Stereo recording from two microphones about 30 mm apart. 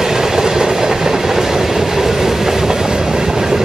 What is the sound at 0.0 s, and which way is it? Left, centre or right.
Train, centre.